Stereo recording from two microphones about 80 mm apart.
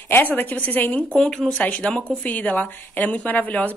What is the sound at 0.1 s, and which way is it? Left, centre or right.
Speech, left.